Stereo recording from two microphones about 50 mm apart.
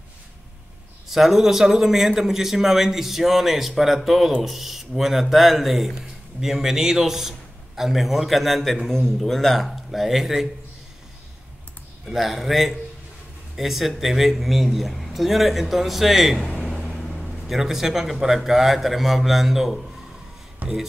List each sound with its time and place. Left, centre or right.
1.0 s a man's voice: centre
12.1 s a man's voice: centre
16.5 s a sound: centre
16.8 s speech: centre
20.6 s music: right